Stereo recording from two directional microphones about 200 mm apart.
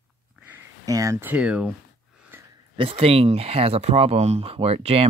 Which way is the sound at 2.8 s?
30° right (ahead or behind).